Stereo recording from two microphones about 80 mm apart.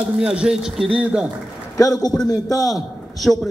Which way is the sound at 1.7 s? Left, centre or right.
Left.